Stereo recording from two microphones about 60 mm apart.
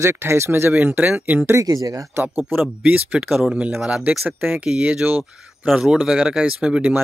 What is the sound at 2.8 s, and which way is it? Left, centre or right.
Speech, right.